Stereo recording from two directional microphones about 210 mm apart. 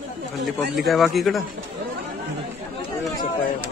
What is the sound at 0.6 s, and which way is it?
Speech, centre (ahead or behind).